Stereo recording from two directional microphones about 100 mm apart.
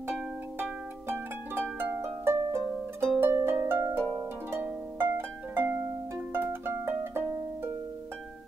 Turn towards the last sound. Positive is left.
turn(degrees=-25)  # may be behind; listen again after turning